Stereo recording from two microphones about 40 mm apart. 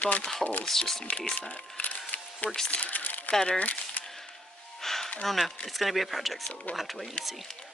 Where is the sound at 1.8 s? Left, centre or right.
Left.